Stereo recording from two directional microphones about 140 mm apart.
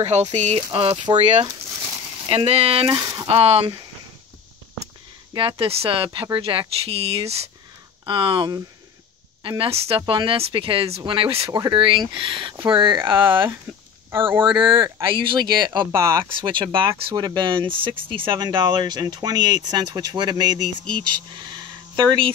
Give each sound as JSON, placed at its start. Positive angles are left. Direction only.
{"t": 0.0, "sound": "speech", "side_deg": -55}
{"t": 0.6, "sound": "speech", "side_deg": -40}
{"t": 2.2, "sound": "speech", "side_deg": -45}
{"t": 2.9, "sound": "speech", "side_deg": -25}
{"t": 3.3, "sound": "speech", "side_deg": -50}
{"t": 5.3, "sound": "speech", "side_deg": -35}
{"t": 8.0, "sound": "speech", "side_deg": -35}
{"t": 11.5, "sound": "speech", "side_deg": -30}
{"t": 13.2, "sound": "speech", "side_deg": -15}
{"t": 14.4, "sound": "speech", "side_deg": -35}
{"t": 15.9, "sound": "speech", "side_deg": -20}
{"t": 16.3, "sound": "speech", "side_deg": -35}